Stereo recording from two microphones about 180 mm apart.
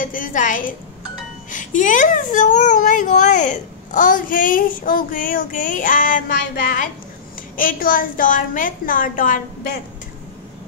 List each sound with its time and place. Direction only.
0.0 s a child's voice: 50° left (ahead or behind)